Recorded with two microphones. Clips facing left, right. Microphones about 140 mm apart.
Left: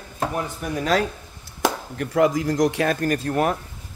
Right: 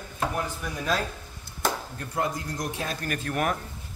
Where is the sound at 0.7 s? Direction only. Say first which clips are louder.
Left 8 dB; 80° left.